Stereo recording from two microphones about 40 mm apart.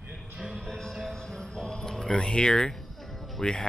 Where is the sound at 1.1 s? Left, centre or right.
Centre.